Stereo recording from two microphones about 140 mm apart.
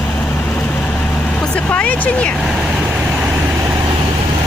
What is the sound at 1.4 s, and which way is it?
Vehicle, 10° left (ahead or behind).